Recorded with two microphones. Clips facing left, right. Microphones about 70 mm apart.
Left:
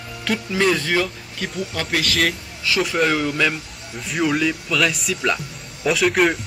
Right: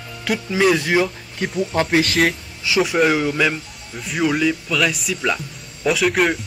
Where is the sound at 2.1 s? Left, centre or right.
Centre.